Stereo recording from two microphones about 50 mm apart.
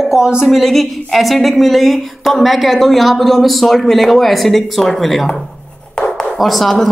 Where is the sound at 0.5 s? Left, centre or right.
Centre.